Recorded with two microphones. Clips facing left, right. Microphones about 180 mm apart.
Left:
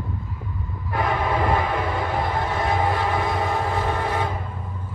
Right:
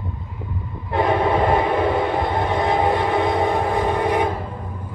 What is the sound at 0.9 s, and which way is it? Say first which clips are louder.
Train: right 5 dB; 25° right (ahead or behind).